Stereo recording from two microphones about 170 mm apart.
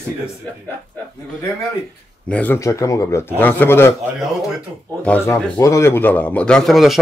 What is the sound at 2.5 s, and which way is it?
Speech, 20° left (ahead or behind).